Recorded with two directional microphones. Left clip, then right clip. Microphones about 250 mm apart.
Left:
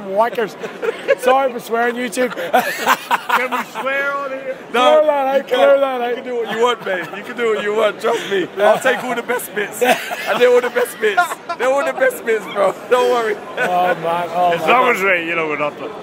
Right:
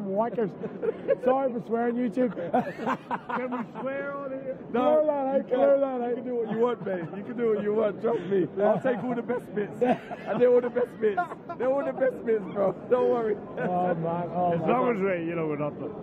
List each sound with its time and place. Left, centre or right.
0.2 s a man's voice: centre